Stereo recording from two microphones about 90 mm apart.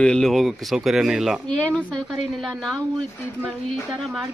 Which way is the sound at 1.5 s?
15° left (ahead or behind).